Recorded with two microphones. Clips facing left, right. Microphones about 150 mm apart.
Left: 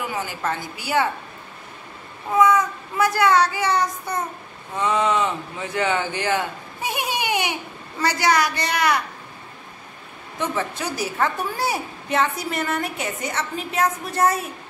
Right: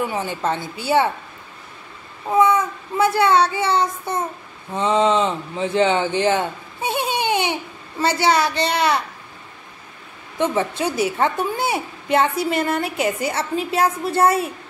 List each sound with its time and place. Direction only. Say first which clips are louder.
0.0 s a woman's voice: right 4 dB; 25° right (ahead or behind)
2.3 s a woman's voice: right 1 dB; 25° right (ahead or behind)
10.4 s a woman's voice: right 5 dB; 25° right (ahead or behind)